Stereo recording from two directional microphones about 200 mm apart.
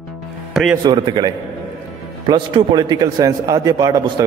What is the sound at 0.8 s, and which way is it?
A man's voice, 20° right (ahead or behind).